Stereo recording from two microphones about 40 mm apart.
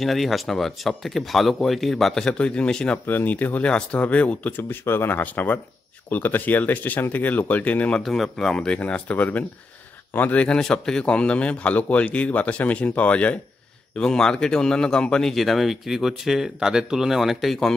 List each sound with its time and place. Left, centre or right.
0.0 s speech: centre
2.3 s speech: left
3.1 s speech: left
3.3 s speech: left
3.6 s speech: left
4.6 s speech: left
5.1 s speech: left
6.0 s speech: left
8.5 s speech: left
10.6 s speech: centre; by 13.4 s left
13.9 s speech: centre
15.3 s speech: centre